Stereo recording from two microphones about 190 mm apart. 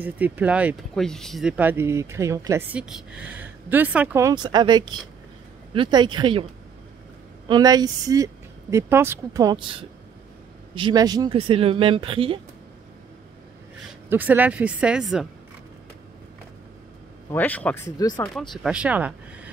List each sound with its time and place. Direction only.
0.0 s a woman's voice: 10° right (ahead or behind); by 6.4 s 25° right (ahead or behind)
7.4 s a woman's voice: 20° right (ahead or behind)
14.0 s speech: 10° right (ahead or behind)
17.3 s speech: 10° left (ahead or behind)
17.9 s speech: 20° left (ahead or behind)
18.3 s speech: centre (ahead or behind)